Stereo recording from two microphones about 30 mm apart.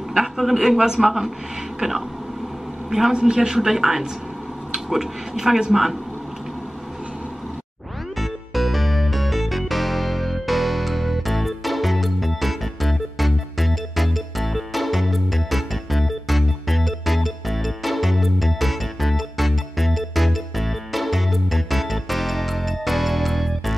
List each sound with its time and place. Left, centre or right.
0.4 s speech: centre
0.7 s a woman's voice: centre
3.2 s a woman's voice: right
3.5 s speech: centre
8.2 s music: centre